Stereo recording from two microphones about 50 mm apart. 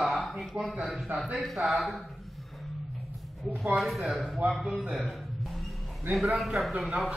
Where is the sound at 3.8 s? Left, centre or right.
Centre.